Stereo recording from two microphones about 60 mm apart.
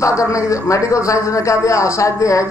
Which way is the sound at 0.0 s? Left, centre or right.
Left.